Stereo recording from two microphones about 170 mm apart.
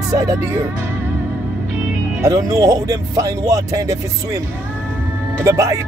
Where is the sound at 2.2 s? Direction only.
20° right (ahead or behind).